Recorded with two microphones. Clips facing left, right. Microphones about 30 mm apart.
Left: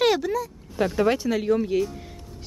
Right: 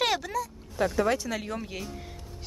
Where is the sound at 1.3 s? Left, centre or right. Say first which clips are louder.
Left 11 dB; centre.